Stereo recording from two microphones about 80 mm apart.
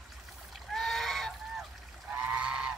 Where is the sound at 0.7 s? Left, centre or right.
Centre.